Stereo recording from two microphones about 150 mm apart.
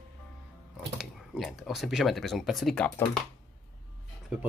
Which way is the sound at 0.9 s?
Centre (ahead or behind).